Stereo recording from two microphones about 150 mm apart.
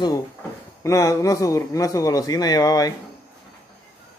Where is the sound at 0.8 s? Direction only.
20° left (ahead or behind).